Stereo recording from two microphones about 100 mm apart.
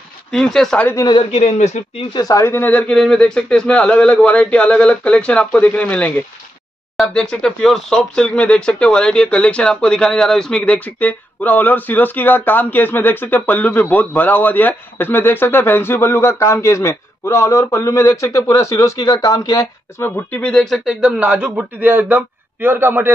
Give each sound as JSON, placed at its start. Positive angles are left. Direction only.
{"t": 0.3, "sound": "speech", "side_deg": 5}
{"t": 1.3, "sound": "speech", "side_deg": 90}
{"t": 2.1, "sound": "speech", "side_deg": 35}
{"t": 20.0, "sound": "speech", "side_deg": 15}
{"t": 20.8, "sound": "a man's voice", "side_deg": -10}